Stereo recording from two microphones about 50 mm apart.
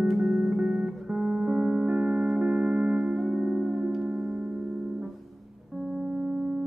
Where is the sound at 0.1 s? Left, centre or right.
Centre.